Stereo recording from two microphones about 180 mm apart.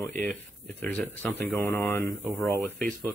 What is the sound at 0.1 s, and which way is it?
Speech, 45° right (ahead or behind).